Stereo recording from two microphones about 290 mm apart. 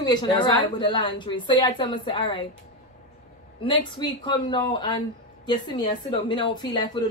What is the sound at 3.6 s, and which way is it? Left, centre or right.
A woman's voice, centre.